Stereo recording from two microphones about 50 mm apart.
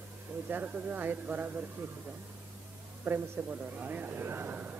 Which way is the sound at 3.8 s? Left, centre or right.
Right.